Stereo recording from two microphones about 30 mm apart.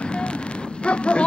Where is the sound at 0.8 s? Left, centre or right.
Left.